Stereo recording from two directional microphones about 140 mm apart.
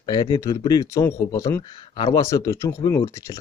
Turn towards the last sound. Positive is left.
turn(degrees=25)  # may be behind; listen again after turning